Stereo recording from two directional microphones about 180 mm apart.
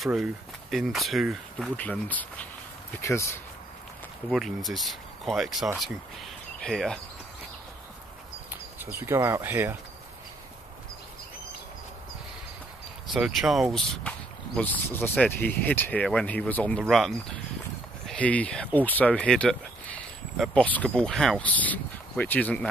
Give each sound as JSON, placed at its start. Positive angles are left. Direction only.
{"t": 0.0, "sound": "speech", "side_deg": 0}
{"t": 4.3, "sound": "speech", "side_deg": 0}
{"t": 8.5, "sound": "speech", "side_deg": -10}
{"t": 13.1, "sound": "speech", "side_deg": 0}
{"t": 18.0, "sound": "speech", "side_deg": 5}